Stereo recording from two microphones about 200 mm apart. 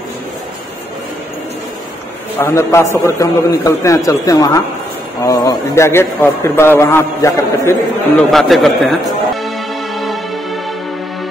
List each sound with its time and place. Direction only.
2.3 s a man's voice: 15° left (ahead or behind)
8.3 s a man's voice: centre (ahead or behind)
9.9 s music: centre (ahead or behind)